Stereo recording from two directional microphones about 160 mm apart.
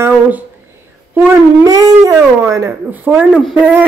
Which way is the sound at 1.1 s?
15° right (ahead or behind).